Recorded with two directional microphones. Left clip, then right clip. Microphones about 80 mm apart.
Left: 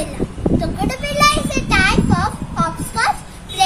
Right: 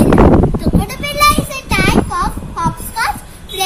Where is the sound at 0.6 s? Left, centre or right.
Left.